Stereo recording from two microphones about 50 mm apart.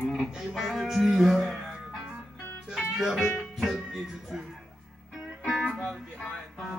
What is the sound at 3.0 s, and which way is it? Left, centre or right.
Speech, centre.